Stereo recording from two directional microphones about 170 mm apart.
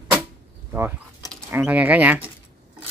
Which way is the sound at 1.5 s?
10° right (ahead or behind).